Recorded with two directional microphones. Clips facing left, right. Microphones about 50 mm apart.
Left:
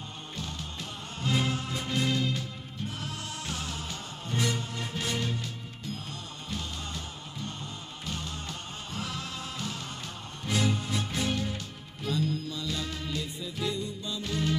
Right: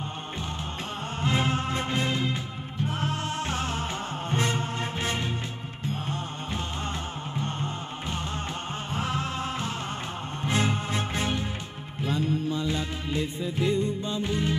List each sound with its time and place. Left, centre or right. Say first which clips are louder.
1.2 s music: right 3 dB; right
7.3 s music: right 7 dB; right
14.2 s music: right 1 dB; right